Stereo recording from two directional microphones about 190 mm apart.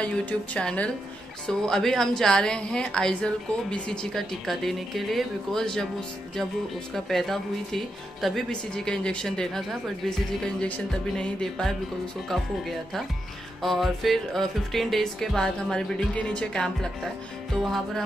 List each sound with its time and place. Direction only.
0.0 s speech: 5° left (ahead or behind)
7.1 s speech: centre (ahead or behind)